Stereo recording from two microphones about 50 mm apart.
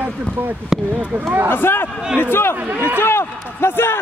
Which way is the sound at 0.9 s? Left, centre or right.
Right.